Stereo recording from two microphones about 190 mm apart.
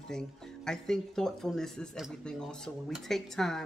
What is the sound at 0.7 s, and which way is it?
Speech, 5° left (ahead or behind).